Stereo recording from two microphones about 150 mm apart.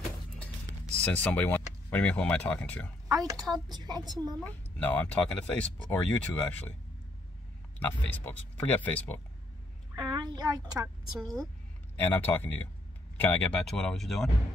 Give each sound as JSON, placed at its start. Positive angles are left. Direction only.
{"t": 1.0, "sound": "speech", "side_deg": 10}
{"t": 3.1, "sound": "a woman's voice", "side_deg": -25}
{"t": 4.4, "sound": "speech", "side_deg": 10}
{"t": 7.8, "sound": "speech", "side_deg": 15}
{"t": 9.9, "sound": "a child's voice", "side_deg": -25}
{"t": 11.1, "sound": "speech", "side_deg": 0}
{"t": 12.0, "sound": "speech", "side_deg": 15}